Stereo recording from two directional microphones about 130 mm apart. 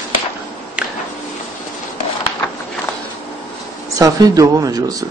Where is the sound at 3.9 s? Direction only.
30° right (ahead or behind).